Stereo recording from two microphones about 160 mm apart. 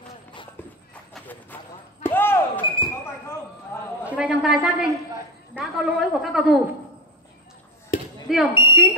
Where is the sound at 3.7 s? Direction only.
15° left (ahead or behind).